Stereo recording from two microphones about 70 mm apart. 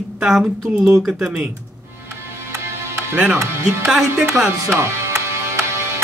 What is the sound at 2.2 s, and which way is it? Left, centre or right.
Music, right.